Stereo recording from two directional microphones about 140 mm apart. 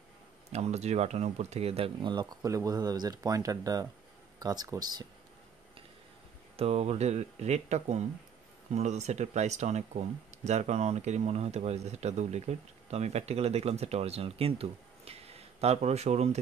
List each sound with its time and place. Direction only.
0.5 s speech: 50° right (ahead or behind); by 5.0 s 30° right (ahead or behind)
6.5 s speech: 45° right (ahead or behind)